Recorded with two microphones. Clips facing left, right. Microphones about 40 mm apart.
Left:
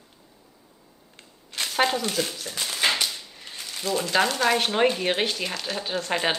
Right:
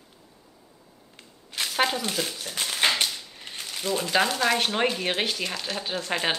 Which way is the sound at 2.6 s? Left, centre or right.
Right.